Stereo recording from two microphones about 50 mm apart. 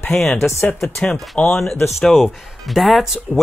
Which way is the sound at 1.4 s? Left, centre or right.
Centre.